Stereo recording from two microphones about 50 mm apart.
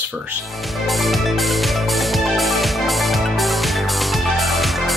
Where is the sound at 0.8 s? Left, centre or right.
Centre.